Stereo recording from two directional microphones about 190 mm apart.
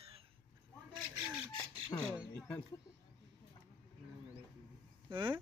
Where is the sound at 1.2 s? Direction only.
10° right (ahead or behind).